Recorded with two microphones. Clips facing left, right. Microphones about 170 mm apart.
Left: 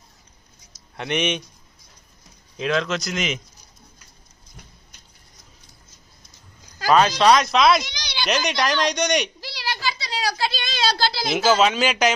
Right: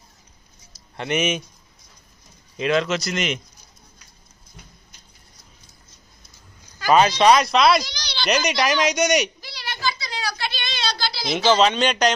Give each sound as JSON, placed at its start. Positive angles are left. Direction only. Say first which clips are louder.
{"t": 0.9, "sound": "speech", "louder": "right 1 dB", "side_deg": 0}
{"t": 2.5, "sound": "speech", "louder": "right 2 dB", "side_deg": 0}
{"t": 6.9, "sound": "speech", "louder": "right 1 dB", "side_deg": 0}
{"t": 7.8, "sound": "a sound", "louder": "even", "side_deg": 15}
{"t": 8.3, "sound": "speech", "louder": "right 2 dB", "side_deg": -5}
{"t": 9.5, "sound": "a sound", "louder": "even", "side_deg": 35}
{"t": 11.3, "sound": "speech", "louder": "right 1 dB", "side_deg": 5}